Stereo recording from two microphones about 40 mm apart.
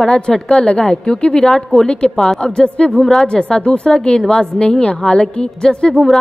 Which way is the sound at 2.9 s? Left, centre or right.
Centre.